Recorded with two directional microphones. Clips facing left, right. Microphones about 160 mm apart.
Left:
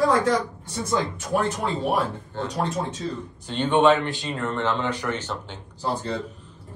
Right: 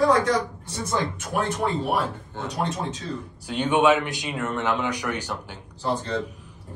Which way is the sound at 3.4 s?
10° right (ahead or behind).